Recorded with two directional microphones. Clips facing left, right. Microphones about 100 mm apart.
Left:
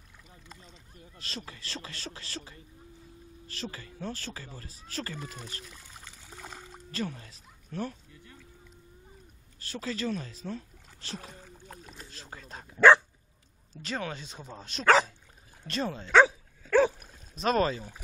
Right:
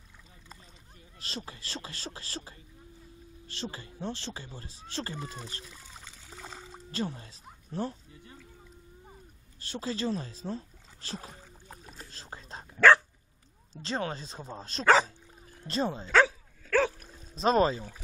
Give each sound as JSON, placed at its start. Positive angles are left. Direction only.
{"t": 1.2, "sound": "speech", "side_deg": -30}
{"t": 5.7, "sound": "splash", "side_deg": 0}
{"t": 6.9, "sound": "speech", "side_deg": -30}
{"t": 9.6, "sound": "speech", "side_deg": -30}
{"t": 11.4, "sound": "boat", "side_deg": 0}
{"t": 12.1, "sound": "a sound", "side_deg": -30}
{"t": 12.7, "sound": "dog", "side_deg": 10}
{"t": 13.7, "sound": "speech", "side_deg": -30}
{"t": 16.1, "sound": "speech", "side_deg": 20}
{"t": 16.7, "sound": "splash", "side_deg": 15}
{"t": 17.4, "sound": "speech", "side_deg": -25}